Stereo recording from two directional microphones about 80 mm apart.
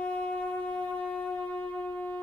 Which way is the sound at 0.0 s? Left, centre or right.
Centre.